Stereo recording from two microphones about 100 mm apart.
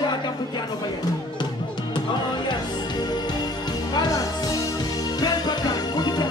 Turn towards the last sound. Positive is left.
turn(degrees=45)  # may be behind; listen again after turning